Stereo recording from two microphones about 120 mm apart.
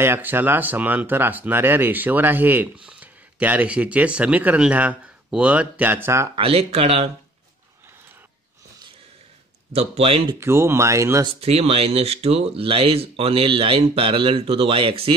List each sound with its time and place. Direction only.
0.0 s speech: 15° right (ahead or behind)
6.3 s speech: 55° right (ahead or behind)
9.7 s speech: 60° right (ahead or behind)
10.4 s speech: 20° right (ahead or behind)
11.4 s speech: 55° right (ahead or behind)